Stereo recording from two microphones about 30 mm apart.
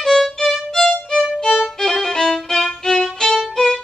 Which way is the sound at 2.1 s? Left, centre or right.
Centre.